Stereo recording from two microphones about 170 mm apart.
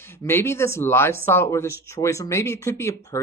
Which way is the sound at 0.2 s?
15° left (ahead or behind).